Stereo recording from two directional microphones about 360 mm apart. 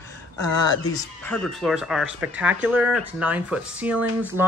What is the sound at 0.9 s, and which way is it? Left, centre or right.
Speech, centre.